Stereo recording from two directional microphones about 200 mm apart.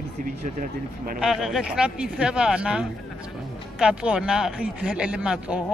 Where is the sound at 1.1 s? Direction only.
Centre (ahead or behind).